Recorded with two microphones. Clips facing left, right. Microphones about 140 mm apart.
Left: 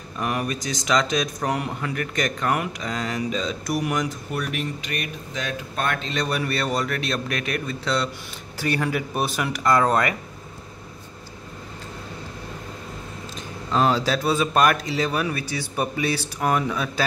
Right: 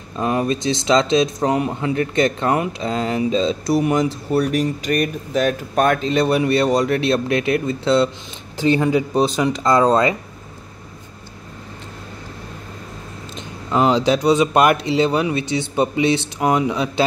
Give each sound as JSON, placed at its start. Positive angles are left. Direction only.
{"t": 0.1, "sound": "speech", "side_deg": -25}
{"t": 6.1, "sound": "speech", "side_deg": -30}
{"t": 13.7, "sound": "speech", "side_deg": -15}